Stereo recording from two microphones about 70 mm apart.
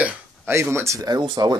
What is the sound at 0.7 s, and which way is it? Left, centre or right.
Speech, right.